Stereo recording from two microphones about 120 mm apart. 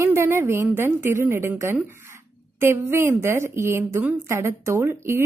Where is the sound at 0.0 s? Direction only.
20° right (ahead or behind).